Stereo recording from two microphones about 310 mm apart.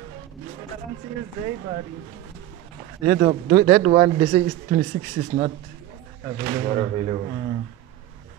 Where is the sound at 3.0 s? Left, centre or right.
Right.